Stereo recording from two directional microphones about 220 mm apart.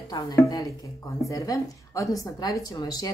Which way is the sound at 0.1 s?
15° left (ahead or behind).